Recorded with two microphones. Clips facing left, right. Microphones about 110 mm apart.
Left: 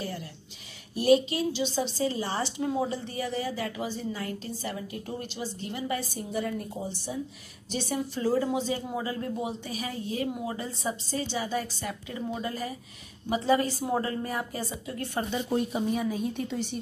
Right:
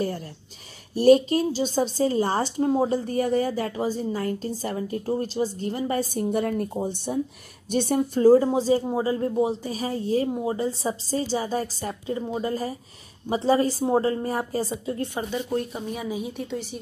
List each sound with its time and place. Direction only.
0.9 s a woman's voice: 45° right (ahead or behind)
6.1 s a woman's voice: 55° right (ahead or behind); by 15.0 s 30° right (ahead or behind)
15.1 s speech: 5° right (ahead or behind)
15.5 s speech: 10° left (ahead or behind)
15.9 s a woman's voice: 5° right (ahead or behind)